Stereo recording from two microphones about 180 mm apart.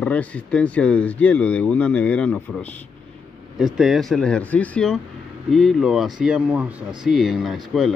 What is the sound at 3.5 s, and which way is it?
Speech, centre (ahead or behind).